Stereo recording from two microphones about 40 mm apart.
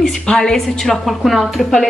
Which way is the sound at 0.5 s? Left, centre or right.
Centre.